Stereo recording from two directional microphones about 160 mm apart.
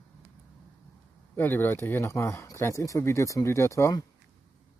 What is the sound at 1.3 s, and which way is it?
Speech, 10° left (ahead or behind).